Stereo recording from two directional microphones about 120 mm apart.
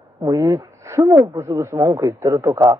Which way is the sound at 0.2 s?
30° right (ahead or behind).